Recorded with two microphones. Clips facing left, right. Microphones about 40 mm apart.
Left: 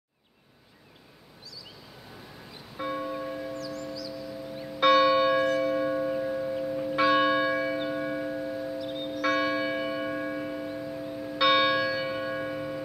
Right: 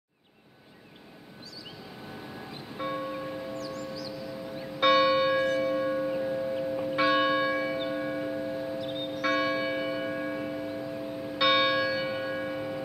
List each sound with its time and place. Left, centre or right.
2.8 s church bell: centre
8.7 s church bell: right
9.2 s church bell: centre